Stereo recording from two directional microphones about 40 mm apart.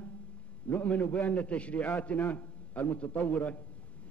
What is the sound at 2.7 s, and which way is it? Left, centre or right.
Speech, left.